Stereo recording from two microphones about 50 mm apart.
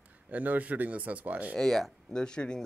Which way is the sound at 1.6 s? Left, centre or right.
Centre.